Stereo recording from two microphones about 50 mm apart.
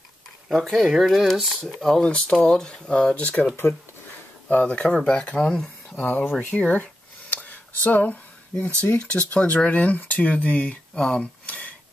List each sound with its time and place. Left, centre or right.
0.5 s speech: centre
0.8 s speech: centre
1.6 s speech: centre
2.0 s speech: left
3.2 s speech: left
4.5 s speech: left
6.0 s speech: left
6.7 s a sound: left
8.9 s speech: left
11.0 s speech: centre
11.4 s a sound: left